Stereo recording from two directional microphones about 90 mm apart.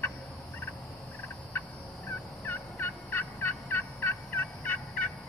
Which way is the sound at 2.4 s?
20° left (ahead or behind).